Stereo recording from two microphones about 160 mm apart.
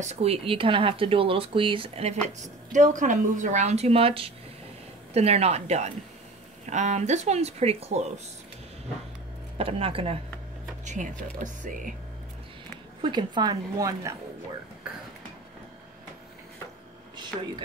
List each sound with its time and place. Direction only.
0.0 s speech: 40° right (ahead or behind)
2.2 s a woman's voice: 50° right (ahead or behind)
9.6 s speech: 35° right (ahead or behind)
10.9 s a woman's voice: 50° right (ahead or behind)
13.0 s a woman's voice: 30° right (ahead or behind)